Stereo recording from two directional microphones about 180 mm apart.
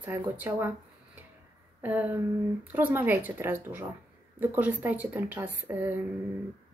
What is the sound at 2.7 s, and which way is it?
Speech, 10° right (ahead or behind).